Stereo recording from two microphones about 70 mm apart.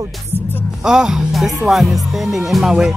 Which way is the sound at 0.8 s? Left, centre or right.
Centre.